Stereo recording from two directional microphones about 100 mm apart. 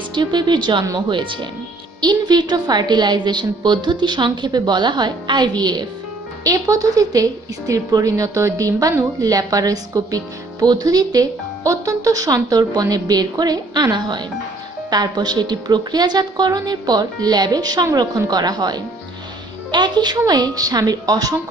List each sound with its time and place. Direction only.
0.1 s a woman's voice: 50° right (ahead or behind)